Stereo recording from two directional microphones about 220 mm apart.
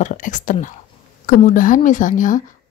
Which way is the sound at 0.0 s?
35° left (ahead or behind).